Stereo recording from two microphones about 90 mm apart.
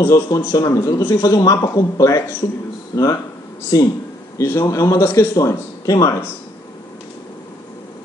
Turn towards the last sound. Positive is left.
turn(degrees=30)  # may be behind; listen again after turning